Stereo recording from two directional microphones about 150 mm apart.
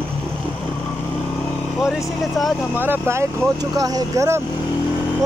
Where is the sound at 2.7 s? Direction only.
15° right (ahead or behind).